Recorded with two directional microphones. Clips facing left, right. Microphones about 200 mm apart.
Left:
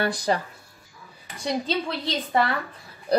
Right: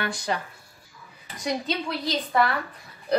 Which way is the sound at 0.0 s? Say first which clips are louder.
Left 5 dB; 35° left (ahead or behind).